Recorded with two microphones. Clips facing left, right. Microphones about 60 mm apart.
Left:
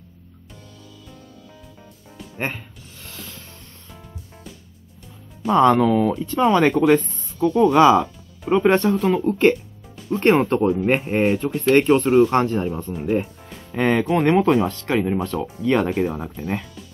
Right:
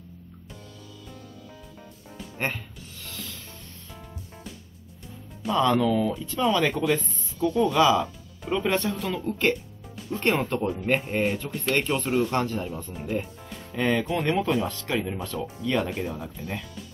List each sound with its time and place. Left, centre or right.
2.3 s speech: centre
5.4 s speech: left
13.0 s speech: left